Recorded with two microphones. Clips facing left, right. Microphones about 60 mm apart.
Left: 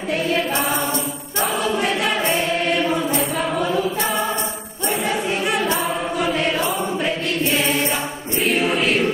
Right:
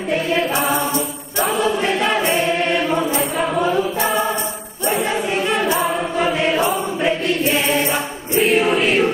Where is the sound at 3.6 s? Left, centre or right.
Centre.